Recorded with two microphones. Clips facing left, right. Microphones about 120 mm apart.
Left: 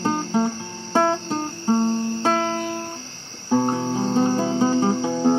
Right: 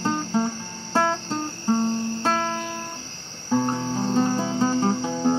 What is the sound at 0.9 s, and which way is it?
Music, 30° left (ahead or behind).